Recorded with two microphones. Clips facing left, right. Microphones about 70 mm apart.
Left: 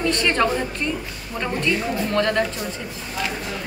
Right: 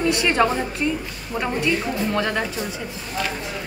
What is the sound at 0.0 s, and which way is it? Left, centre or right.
Speech, centre.